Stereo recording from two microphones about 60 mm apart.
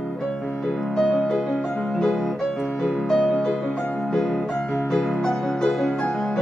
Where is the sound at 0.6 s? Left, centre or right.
Centre.